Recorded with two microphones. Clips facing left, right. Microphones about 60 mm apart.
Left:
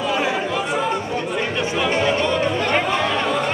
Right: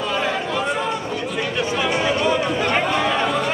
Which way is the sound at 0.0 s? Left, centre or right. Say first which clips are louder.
Left 1 dB; centre.